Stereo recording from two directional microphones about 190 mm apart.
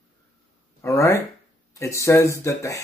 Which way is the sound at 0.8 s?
15° left (ahead or behind).